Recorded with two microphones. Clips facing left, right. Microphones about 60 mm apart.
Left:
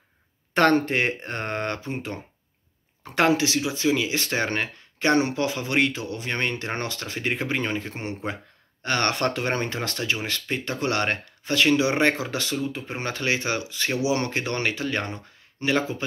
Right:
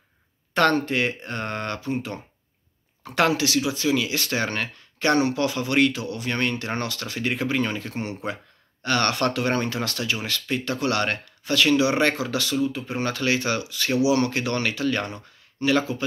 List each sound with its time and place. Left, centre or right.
0.6 s speech: left